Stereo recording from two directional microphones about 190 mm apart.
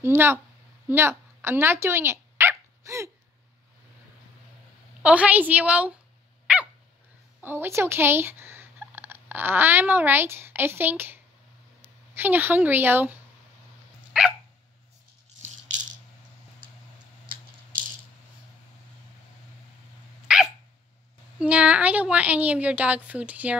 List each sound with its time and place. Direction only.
0.0 s a woman's voice: 10° right (ahead or behind)
0.8 s dog: 10° right (ahead or behind)
5.0 s a woman's voice: 5° right (ahead or behind)
6.4 s dog: 5° right (ahead or behind)
7.4 s a woman's voice: 10° right (ahead or behind)
14.1 s dog: 5° right (ahead or behind)
15.4 s rattle: 40° right (ahead or behind)
20.2 s dog: 5° right (ahead or behind)
21.4 s a woman's voice: 5° right (ahead or behind)